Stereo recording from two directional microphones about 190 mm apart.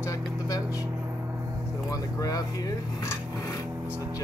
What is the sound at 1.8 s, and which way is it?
Speech, 20° left (ahead or behind).